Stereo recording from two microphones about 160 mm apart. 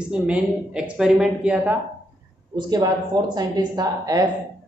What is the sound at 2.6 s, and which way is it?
Speech, 25° right (ahead or behind).